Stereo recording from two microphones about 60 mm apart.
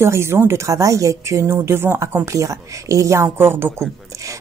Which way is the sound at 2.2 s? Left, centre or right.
Right.